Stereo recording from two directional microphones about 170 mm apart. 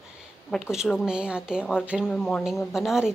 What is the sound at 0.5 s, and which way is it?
A woman's voice, centre (ahead or behind).